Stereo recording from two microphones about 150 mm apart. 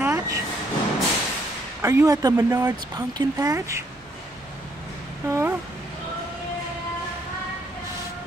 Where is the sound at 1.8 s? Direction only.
20° right (ahead or behind).